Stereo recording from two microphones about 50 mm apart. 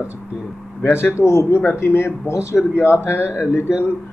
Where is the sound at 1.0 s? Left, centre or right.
Left.